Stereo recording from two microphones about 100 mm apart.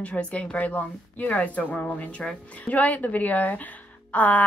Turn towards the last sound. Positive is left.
turn(degrees=15)  # may be behind; listen again after turning